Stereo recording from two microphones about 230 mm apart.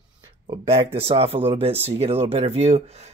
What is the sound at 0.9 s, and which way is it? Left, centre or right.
Speech, right.